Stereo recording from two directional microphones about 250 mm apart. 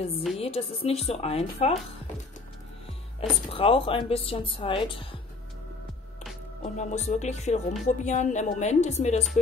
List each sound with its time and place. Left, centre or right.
0.4 s speech: left
3.2 s speech: left
6.6 s speech: left